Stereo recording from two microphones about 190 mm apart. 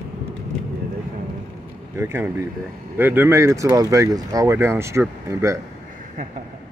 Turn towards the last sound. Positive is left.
turn(degrees=-15)  # may be behind; listen again after turning